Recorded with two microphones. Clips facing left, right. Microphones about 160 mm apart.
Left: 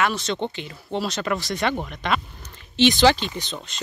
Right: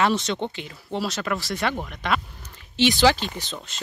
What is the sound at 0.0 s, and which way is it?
Speech, 25° right (ahead or behind).